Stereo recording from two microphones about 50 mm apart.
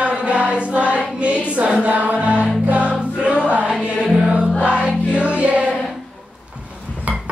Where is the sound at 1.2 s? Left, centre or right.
Right.